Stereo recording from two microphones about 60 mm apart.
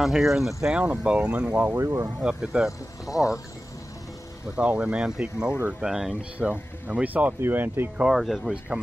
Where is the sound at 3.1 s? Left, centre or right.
Left.